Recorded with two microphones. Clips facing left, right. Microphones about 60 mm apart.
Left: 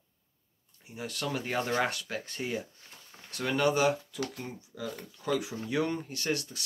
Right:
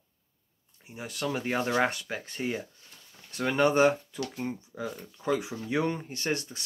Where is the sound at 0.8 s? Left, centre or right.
Centre.